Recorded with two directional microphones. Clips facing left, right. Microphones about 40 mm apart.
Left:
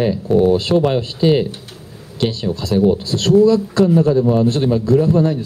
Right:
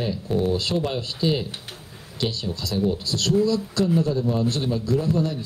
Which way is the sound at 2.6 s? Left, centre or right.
Left.